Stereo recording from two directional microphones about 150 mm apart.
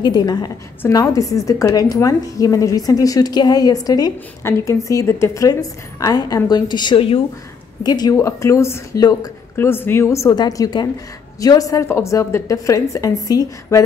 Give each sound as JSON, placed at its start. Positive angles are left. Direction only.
{"t": 0.0, "sound": "a woman's voice", "side_deg": 30}